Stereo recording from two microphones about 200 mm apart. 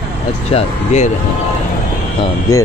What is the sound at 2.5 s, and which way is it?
Speech, 15° left (ahead or behind).